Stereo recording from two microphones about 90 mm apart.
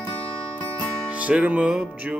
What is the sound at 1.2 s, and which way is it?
Music, 15° right (ahead or behind).